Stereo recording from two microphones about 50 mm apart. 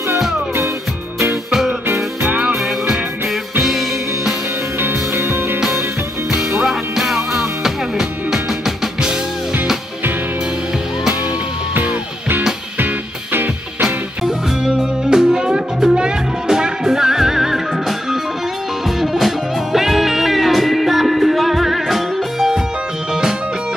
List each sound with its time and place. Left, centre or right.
2.5 s music: centre
4.7 s music: right
6.6 s music: centre
11.7 s music: right
13.8 s music: centre